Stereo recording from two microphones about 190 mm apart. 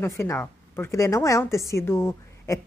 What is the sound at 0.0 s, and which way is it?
Speech, 15° left (ahead or behind).